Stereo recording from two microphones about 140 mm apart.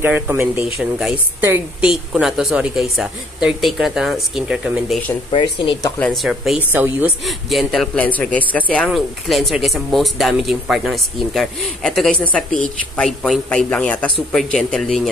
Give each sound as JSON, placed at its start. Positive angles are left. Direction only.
{"t": 0.0, "sound": "speech", "side_deg": -15}
{"t": 0.7, "sound": "a man's voice", "side_deg": 0}
{"t": 1.4, "sound": "speech", "side_deg": -15}
{"t": 1.9, "sound": "a man's voice", "side_deg": -5}
{"t": 5.3, "sound": "speech", "side_deg": 35}
{"t": 5.9, "sound": "a man's voice", "side_deg": 0}
{"t": 6.7, "sound": "speech", "side_deg": -15}
{"t": 7.2, "sound": "a man's voice", "side_deg": 0}